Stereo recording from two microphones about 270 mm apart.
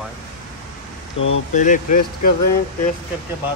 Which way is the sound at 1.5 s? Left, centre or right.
Left.